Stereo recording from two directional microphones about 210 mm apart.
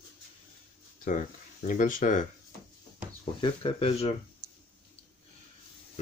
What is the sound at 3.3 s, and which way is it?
Speech, 25° left (ahead or behind).